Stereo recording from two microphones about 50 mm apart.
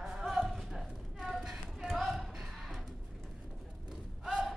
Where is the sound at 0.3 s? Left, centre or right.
Centre.